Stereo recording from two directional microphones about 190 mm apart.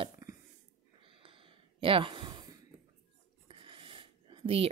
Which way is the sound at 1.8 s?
25° right (ahead or behind).